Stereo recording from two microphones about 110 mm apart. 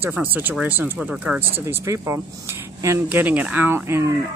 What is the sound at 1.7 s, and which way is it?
Speech, 25° right (ahead or behind).